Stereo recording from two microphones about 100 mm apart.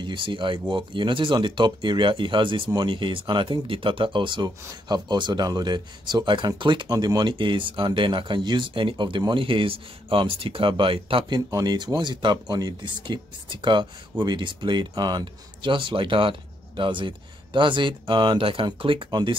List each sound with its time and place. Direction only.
0.0 s speech: 55° right (ahead or behind)